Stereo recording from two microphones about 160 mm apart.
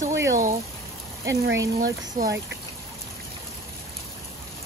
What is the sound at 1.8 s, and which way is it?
Speech, 65° right (ahead or behind).